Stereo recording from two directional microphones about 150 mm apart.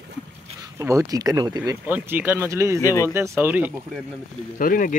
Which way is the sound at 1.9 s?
10° right (ahead or behind).